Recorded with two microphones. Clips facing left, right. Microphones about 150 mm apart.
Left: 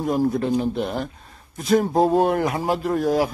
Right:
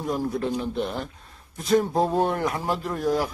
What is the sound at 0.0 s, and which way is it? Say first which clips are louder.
Speech: left 5 dB; 15° left (ahead or behind).